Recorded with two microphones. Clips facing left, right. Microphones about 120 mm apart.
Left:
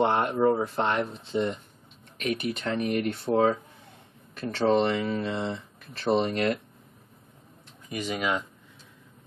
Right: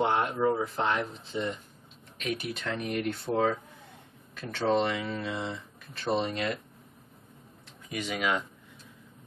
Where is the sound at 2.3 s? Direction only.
60° left (ahead or behind).